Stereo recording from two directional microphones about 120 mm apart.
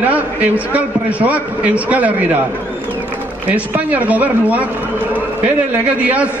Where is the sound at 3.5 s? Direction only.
10° right (ahead or behind).